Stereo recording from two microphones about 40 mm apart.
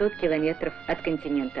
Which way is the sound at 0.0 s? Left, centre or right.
Left.